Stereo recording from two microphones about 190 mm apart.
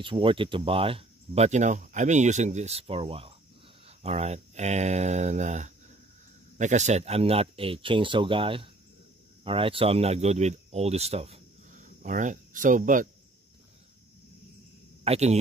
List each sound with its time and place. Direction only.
0.0 s speech: 25° right (ahead or behind); by 13.1 s 45° right (ahead or behind)
15.0 s speech: 35° right (ahead or behind)